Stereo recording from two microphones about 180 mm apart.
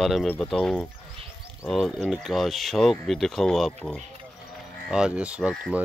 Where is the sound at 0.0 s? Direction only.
Centre (ahead or behind).